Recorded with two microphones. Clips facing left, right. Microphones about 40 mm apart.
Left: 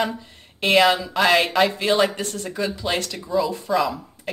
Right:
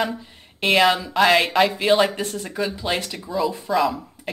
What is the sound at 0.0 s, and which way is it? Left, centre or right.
Speech, centre.